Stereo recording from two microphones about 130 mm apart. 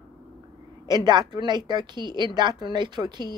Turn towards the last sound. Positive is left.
turn(degrees=-35)  # may be behind; listen again after turning